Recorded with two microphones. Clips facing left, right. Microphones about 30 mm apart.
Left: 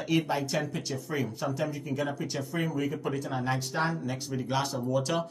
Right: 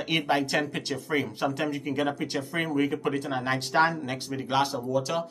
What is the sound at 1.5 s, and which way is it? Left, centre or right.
Speech, right.